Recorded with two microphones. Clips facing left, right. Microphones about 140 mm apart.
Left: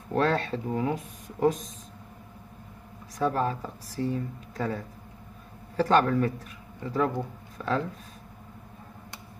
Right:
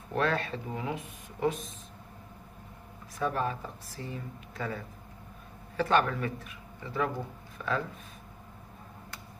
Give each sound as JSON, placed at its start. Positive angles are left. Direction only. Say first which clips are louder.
{"t": 0.1, "sound": "speech", "louder": "left 4 dB", "side_deg": 40}
{"t": 3.2, "sound": "speech", "louder": "left 4 dB", "side_deg": 35}